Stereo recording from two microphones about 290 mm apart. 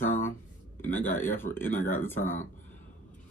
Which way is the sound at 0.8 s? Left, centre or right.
Centre.